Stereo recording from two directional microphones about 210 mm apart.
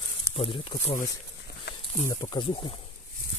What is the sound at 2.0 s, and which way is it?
Speech, 20° left (ahead or behind).